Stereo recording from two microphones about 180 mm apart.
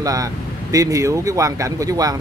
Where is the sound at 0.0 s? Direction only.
20° right (ahead or behind).